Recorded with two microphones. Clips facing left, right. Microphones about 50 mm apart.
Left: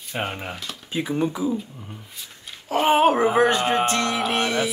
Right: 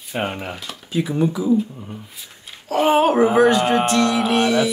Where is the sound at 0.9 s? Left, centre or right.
Left.